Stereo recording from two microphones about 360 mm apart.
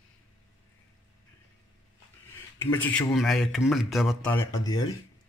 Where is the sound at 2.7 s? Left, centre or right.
Centre.